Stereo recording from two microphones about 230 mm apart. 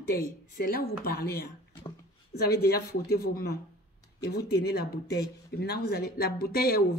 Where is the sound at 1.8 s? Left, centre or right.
Centre.